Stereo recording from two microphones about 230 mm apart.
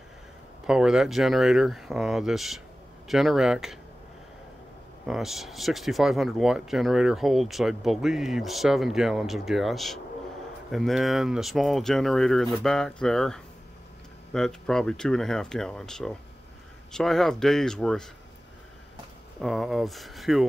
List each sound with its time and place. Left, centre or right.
0.7 s speech: centre
5.0 s speech: centre
19.4 s speech: centre